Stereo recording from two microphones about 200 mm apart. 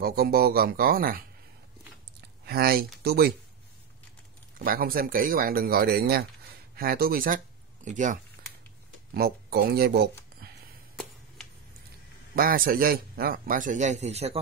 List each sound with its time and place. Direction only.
0.0 s a man's voice: 50° right (ahead or behind)
2.4 s speech: 50° right (ahead or behind)
4.6 s a man's voice: 45° right (ahead or behind)
9.1 s a man's voice: 50° right (ahead or behind)
12.4 s a man's voice: 45° right (ahead or behind)